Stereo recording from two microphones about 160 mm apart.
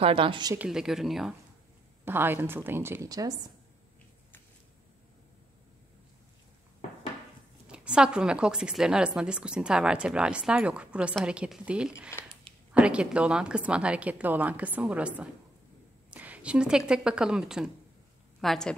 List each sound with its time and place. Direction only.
0.0 s a woman's voice: 35° right (ahead or behind)
0.6 s a woman's voice: 5° right (ahead or behind)
2.0 s a woman's voice: 15° right (ahead or behind)
7.6 s a woman's voice: 5° right (ahead or behind)